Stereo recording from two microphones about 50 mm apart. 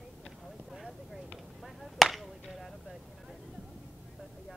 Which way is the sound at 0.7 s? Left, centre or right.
Centre.